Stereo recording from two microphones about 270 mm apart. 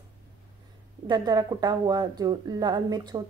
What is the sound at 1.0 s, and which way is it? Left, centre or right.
Speech, centre.